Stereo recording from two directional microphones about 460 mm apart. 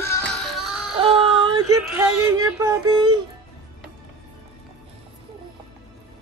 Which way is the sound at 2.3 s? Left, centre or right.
Centre.